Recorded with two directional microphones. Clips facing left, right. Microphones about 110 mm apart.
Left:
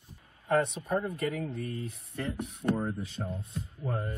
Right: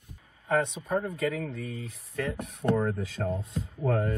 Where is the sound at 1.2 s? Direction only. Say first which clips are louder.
Right 2 dB; 90° right.